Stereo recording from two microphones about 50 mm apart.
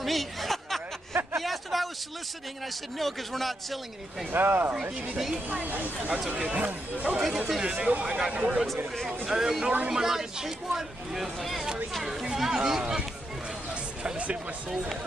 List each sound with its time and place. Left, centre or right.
0.0 s a sound: centre
3.0 s speech: centre
4.3 s speech: right
5.1 s speech: centre
5.5 s speech: right
6.3 s speech: right
7.2 s speech: centre
7.6 s speech: centre
9.3 s speech: centre
11.3 s speech: centre
14.0 s a sound: right